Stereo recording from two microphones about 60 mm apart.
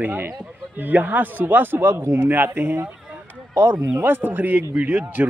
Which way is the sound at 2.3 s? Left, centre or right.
Right.